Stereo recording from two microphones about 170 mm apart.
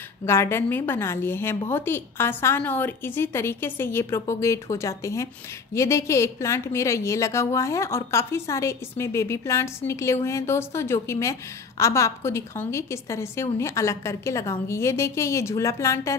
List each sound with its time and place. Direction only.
0.2 s a woman's voice: 15° left (ahead or behind)